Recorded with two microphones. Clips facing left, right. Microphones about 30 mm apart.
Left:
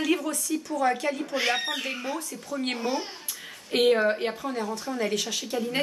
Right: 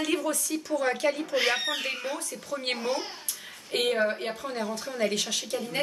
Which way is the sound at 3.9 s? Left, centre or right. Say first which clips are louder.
Left 4 dB; centre.